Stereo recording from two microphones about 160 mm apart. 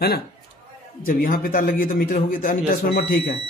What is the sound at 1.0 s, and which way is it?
Speech, 60° left (ahead or behind).